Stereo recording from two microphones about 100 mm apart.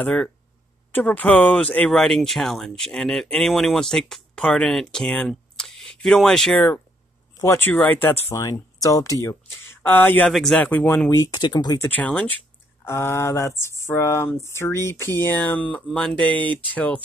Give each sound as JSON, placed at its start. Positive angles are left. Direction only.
{"t": 0.0, "sound": "speech", "side_deg": 15}
{"t": 7.3, "sound": "speech", "side_deg": 25}
{"t": 9.8, "sound": "speech", "side_deg": 20}
{"t": 10.3, "sound": "speech", "side_deg": 0}
{"t": 10.6, "sound": "speech", "side_deg": 15}
{"t": 11.2, "sound": "speech", "side_deg": 45}
{"t": 11.9, "sound": "speech", "side_deg": 15}
{"t": 12.8, "sound": "speech", "side_deg": 25}